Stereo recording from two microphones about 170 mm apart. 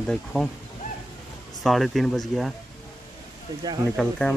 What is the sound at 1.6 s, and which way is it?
Speech, centre (ahead or behind).